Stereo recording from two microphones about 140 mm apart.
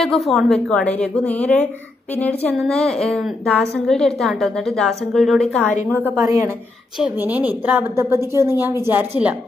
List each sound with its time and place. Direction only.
0.0 s a woman's voice: centre (ahead or behind)
6.1 s a woman's voice: 20° right (ahead or behind)
7.0 s a woman's voice: 10° right (ahead or behind)